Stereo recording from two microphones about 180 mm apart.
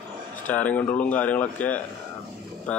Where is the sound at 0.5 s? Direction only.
10° left (ahead or behind).